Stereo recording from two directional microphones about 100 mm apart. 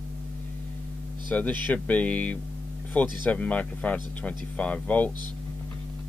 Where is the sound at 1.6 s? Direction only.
15° left (ahead or behind).